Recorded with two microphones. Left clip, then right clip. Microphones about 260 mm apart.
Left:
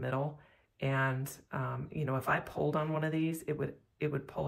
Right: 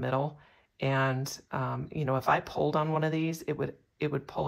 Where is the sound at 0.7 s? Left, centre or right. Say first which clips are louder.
Right 4 dB; centre.